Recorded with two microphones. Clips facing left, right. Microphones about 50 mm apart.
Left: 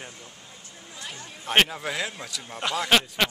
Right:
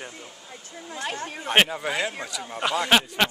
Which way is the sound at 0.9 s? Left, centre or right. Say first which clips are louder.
Right 9 dB; right.